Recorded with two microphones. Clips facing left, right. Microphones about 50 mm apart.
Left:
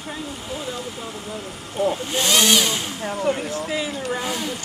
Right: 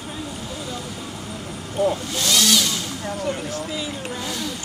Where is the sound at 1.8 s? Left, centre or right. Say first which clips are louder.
Even; left.